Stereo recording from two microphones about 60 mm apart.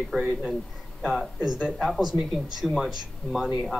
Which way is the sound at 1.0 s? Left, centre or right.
Centre.